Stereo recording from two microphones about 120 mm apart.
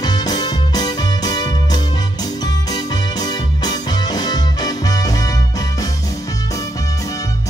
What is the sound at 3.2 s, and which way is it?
Music, 35° left (ahead or behind).